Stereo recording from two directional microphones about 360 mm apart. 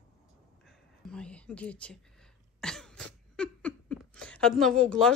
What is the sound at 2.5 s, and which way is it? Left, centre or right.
Cough, centre.